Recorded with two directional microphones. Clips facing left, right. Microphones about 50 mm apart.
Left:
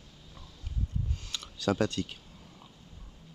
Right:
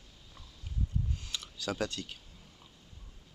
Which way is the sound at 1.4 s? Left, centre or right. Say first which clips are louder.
Left 7 dB; centre.